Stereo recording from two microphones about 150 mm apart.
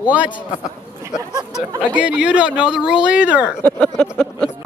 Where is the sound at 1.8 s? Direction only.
10° right (ahead or behind).